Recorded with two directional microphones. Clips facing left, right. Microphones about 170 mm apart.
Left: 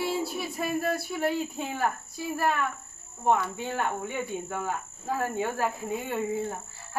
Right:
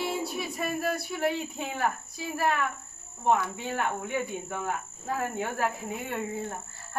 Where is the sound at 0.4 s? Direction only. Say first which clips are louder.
Left 1 dB; centre (ahead or behind).